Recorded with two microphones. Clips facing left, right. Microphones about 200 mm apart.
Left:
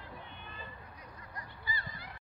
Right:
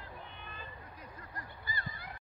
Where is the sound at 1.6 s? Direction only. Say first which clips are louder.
Left 1 dB; 50° right (ahead or behind).